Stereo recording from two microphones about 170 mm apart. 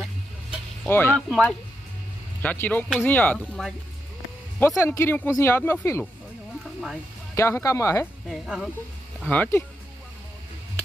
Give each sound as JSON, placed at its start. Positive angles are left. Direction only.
{"t": 0.8, "sound": "speech", "side_deg": 10}
{"t": 1.3, "sound": "speech", "side_deg": 0}
{"t": 2.4, "sound": "speech", "side_deg": 10}
{"t": 7.3, "sound": "speech", "side_deg": 15}
{"t": 8.3, "sound": "speech", "side_deg": 0}